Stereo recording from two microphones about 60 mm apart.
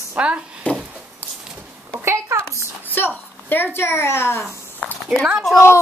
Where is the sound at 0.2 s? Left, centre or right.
Centre.